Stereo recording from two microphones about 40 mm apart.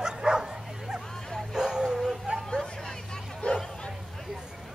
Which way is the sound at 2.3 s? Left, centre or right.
Right.